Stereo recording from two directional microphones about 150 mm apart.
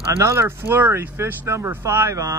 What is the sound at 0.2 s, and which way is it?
Speech, 20° right (ahead or behind).